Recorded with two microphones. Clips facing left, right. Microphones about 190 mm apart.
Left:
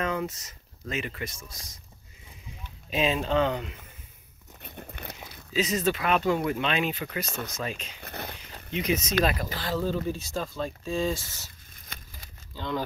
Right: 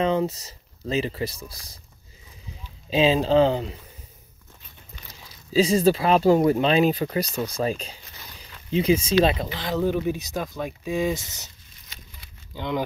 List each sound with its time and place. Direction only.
0.0 s speech: 30° right (ahead or behind)
2.9 s speech: 30° right (ahead or behind)
4.6 s biting: 60° left (ahead or behind)
5.5 s speech: 30° right (ahead or behind)
8.0 s a sound: 60° left (ahead or behind)
8.6 s speech: 30° right (ahead or behind)
11.9 s keys jangling: 55° left (ahead or behind)
12.5 s speech: 15° right (ahead or behind)